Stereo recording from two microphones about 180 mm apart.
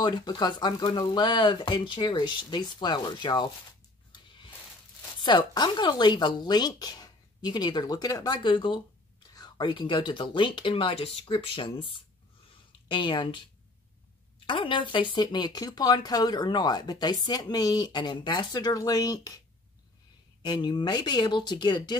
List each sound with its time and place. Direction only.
0.0 s speech: 25° left (ahead or behind)
5.2 s speech: 25° left (ahead or behind)
14.4 s speech: 25° left (ahead or behind)
20.4 s speech: 25° left (ahead or behind)